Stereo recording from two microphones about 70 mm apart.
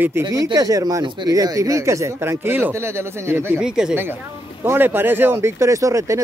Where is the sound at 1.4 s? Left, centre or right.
Right.